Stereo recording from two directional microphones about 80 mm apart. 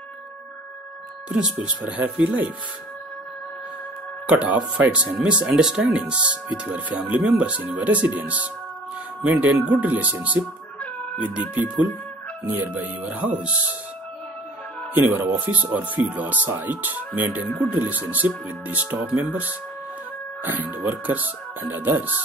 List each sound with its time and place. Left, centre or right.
1.3 s speech: centre
4.3 s speech: centre
15.2 s speech: right